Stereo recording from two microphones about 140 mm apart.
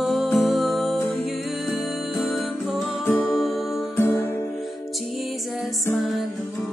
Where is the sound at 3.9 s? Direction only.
15° left (ahead or behind).